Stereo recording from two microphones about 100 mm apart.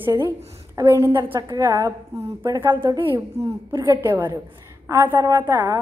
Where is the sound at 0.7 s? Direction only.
30° right (ahead or behind).